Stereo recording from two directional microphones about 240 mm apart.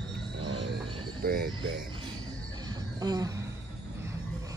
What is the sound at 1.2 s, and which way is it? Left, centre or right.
Music, right.